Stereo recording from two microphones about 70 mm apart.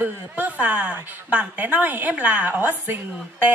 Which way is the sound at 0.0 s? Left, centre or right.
Right.